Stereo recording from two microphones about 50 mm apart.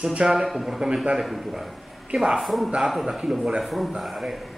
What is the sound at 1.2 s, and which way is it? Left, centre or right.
Speech, centre.